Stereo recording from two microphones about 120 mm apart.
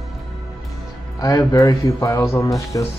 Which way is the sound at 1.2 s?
30° left (ahead or behind).